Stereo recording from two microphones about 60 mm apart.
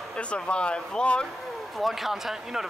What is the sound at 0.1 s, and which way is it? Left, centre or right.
Speech, centre.